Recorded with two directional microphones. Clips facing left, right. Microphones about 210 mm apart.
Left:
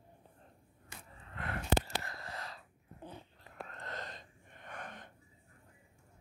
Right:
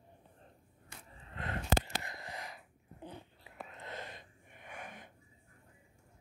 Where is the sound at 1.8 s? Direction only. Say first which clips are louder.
Left 1 dB; 20° right (ahead or behind).